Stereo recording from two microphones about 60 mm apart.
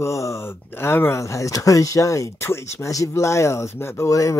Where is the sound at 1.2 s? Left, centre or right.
Left.